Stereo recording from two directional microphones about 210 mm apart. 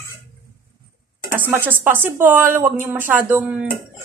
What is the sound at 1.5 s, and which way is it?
A woman's voice, 10° right (ahead or behind).